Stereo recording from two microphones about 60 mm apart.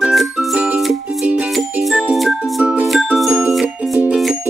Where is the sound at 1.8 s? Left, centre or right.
Centre.